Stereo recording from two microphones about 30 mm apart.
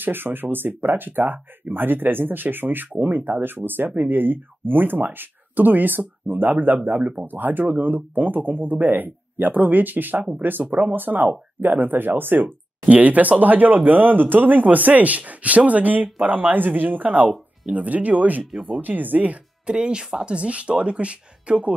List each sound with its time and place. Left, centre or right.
0.0 s speech: right
12.8 s speech: right
16.3 s speech: right
17.7 s speech: right
18.8 s speech: right
19.6 s speech: right
20.2 s speech: right